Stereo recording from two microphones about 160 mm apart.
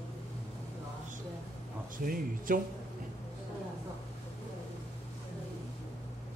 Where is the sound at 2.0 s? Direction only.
60° right (ahead or behind).